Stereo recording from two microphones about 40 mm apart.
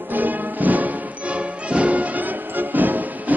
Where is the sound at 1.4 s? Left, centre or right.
Right.